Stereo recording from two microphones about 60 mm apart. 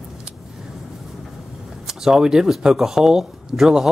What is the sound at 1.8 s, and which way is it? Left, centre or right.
Speech, centre.